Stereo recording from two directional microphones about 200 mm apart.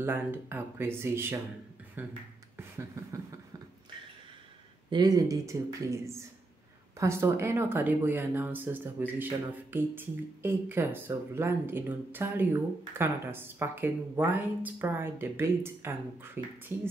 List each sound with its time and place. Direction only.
0.0 s speech: 10° right (ahead or behind)
2.5 s beatboxing: 15° right (ahead or behind)
4.8 s speech: 20° right (ahead or behind)